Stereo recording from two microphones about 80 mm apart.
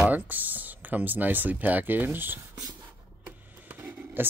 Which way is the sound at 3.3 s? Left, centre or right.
Centre.